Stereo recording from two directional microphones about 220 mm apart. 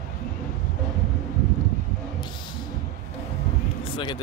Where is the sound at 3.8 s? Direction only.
20° left (ahead or behind).